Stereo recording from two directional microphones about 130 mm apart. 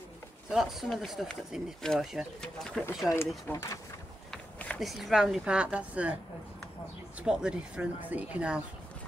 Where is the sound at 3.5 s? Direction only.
25° left (ahead or behind).